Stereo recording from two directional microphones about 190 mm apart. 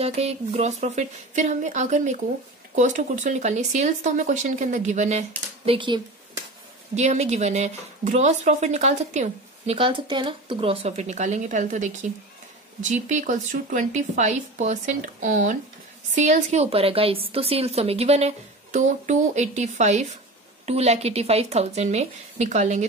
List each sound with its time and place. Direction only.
0.0 s speech: 35° right (ahead or behind)
5.7 s speech: 25° right (ahead or behind)
7.0 s speech: 35° right (ahead or behind)